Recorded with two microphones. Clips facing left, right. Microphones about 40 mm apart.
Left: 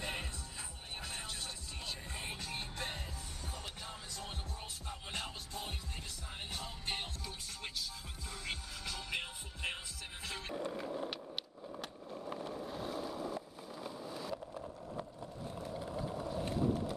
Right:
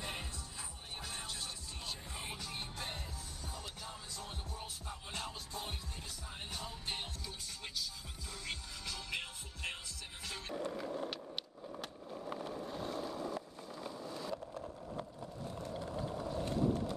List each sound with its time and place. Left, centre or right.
0.0 s music: left
7.6 s music: centre
10.5 s a sound: centre
11.7 s boat: centre
15.4 s a sound: centre
15.8 s vehicle: centre
16.5 s boat: centre